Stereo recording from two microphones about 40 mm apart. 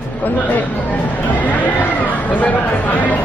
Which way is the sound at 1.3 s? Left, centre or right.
Left.